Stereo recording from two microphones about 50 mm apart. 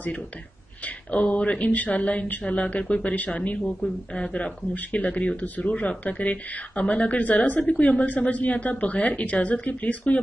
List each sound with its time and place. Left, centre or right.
0.8 s speech: left
3.8 s speech: centre